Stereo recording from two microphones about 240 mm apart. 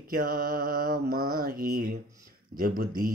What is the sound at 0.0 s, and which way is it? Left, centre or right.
Speech, right.